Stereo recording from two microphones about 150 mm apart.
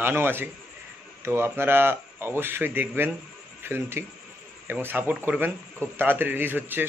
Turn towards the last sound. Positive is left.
turn(degrees=-15)  # may be behind; listen again after turning